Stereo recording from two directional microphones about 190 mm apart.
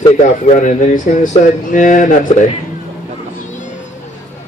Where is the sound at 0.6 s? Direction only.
40° left (ahead or behind).